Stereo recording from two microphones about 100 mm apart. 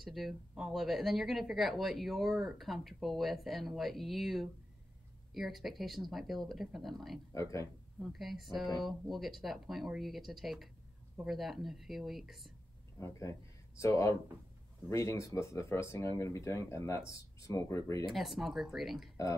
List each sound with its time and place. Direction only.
0.0 s speech: centre (ahead or behind)
13.0 s speech: 30° left (ahead or behind)
18.1 s speech: centre (ahead or behind)